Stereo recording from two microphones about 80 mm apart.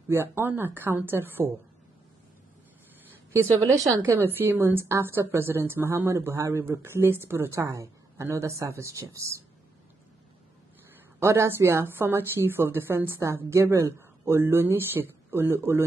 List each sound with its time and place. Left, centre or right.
0.1 s speech: right
3.3 s a woman's voice: right
4.0 s a woman's voice: right
11.1 s a woman's voice: right